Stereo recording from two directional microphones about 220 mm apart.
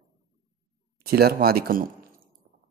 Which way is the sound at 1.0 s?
45° right (ahead or behind).